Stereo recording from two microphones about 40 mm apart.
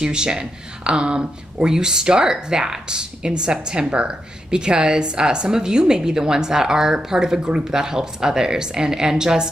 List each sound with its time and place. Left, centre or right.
0.0 s a woman's voice: right